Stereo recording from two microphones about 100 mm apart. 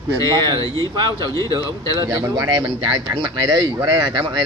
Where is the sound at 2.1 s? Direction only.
40° right (ahead or behind).